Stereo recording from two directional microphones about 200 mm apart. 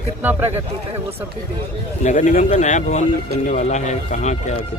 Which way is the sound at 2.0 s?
35° left (ahead or behind).